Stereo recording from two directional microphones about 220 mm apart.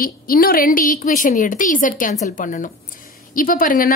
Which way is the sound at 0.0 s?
40° left (ahead or behind).